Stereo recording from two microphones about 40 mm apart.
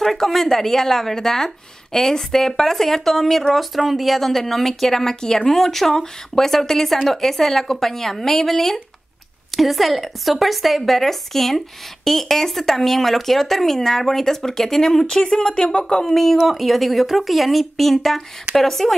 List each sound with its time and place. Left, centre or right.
0.0 s speech: centre
16.4 s speech: centre